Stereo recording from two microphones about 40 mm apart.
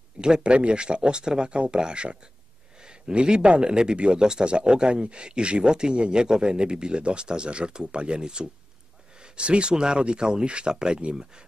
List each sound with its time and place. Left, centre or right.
0.2 s a man's voice: right